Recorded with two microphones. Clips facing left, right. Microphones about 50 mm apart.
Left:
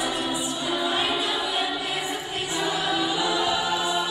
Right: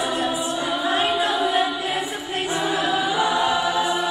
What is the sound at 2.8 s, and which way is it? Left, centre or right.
Music, centre.